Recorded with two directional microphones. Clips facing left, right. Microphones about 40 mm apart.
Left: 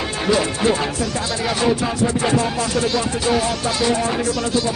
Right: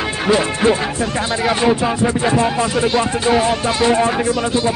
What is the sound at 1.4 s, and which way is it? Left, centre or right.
Speech, right.